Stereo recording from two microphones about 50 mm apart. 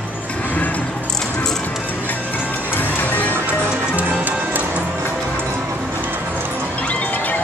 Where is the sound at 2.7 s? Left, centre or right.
Left.